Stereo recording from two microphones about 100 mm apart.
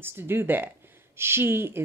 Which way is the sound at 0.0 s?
25° right (ahead or behind).